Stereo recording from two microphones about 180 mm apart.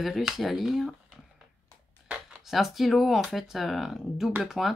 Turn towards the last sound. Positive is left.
turn(degrees=0)  # may be behind; listen again after turning